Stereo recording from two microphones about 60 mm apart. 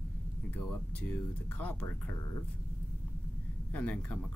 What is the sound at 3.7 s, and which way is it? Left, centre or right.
Speech, left.